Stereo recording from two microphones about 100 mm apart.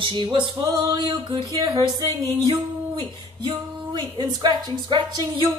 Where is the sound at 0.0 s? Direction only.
50° right (ahead or behind).